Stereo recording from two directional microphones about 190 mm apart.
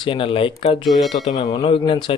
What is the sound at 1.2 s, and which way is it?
Speech, 20° left (ahead or behind).